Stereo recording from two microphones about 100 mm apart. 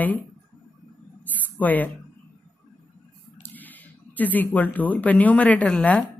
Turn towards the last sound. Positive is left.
turn(degrees=15)  # may be behind; listen again after turning